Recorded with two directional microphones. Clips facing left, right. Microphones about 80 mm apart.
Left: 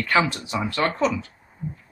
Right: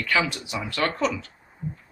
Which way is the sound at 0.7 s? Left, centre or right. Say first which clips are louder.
Left 2 dB; left.